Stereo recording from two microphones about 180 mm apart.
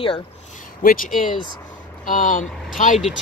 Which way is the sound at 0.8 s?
50° left (ahead or behind).